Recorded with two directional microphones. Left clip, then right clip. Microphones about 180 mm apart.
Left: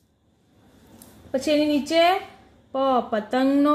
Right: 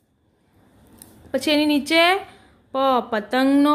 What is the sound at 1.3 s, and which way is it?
Speech, 20° right (ahead or behind).